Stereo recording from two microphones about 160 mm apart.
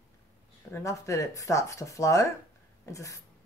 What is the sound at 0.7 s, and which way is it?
Speech, 20° left (ahead or behind).